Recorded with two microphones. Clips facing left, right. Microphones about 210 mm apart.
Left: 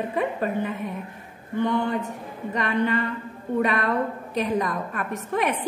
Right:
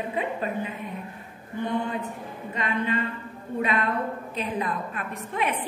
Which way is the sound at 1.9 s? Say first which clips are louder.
Left 3 dB; 45° left (ahead or behind).